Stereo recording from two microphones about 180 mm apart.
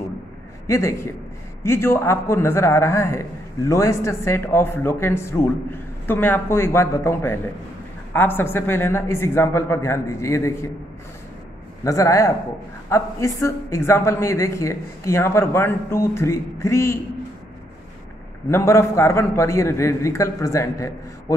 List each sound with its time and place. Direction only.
0.7 s a man's voice: 15° left (ahead or behind)
11.8 s a man's voice: 15° left (ahead or behind)
18.5 s a man's voice: 15° left (ahead or behind)